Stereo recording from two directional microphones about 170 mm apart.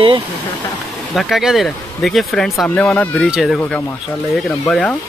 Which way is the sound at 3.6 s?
10° left (ahead or behind).